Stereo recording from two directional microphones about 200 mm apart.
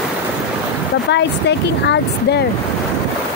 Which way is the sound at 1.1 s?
60° left (ahead or behind).